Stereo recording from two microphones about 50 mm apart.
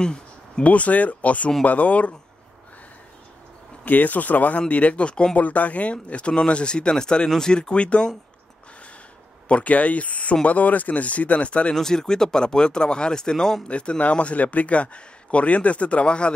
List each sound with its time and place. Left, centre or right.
0.0 s a sound: centre
0.7 s speech: left
3.8 s speech: left
9.5 s speech: left
11.7 s speech: centre
13.7 s speech: left